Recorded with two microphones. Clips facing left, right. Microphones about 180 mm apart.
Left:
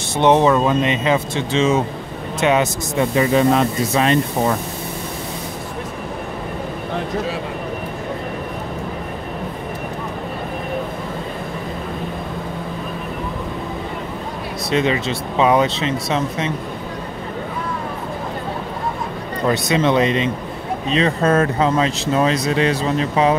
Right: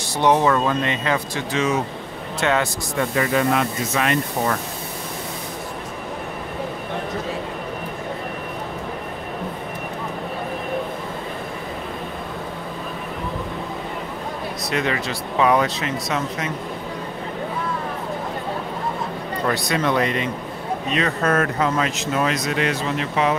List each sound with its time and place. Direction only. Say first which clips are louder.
0.2 s speech: left 4 dB; 20° left (ahead or behind)
14.7 s speech: left 6 dB; 25° left (ahead or behind)
19.4 s speech: left 5 dB; 20° left (ahead or behind)